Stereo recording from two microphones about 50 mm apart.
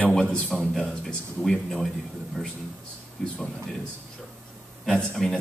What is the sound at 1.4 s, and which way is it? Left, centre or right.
Speech, centre.